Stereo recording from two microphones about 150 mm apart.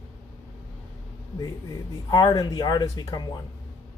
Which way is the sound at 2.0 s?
25° left (ahead or behind).